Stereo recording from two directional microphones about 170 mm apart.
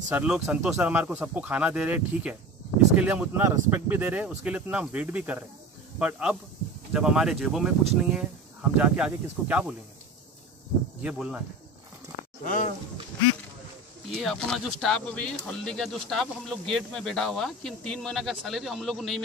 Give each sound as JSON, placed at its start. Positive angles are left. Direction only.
{"t": 0.1, "sound": "speech", "side_deg": -10}
{"t": 11.0, "sound": "speech", "side_deg": -5}
{"t": 12.4, "sound": "speech", "side_deg": 50}
{"t": 14.1, "sound": "speech", "side_deg": 5}